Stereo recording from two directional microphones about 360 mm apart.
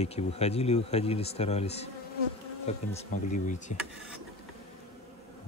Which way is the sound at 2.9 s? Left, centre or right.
Centre.